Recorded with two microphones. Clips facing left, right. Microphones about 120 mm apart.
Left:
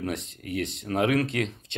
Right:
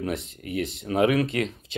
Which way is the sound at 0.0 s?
Centre (ahead or behind).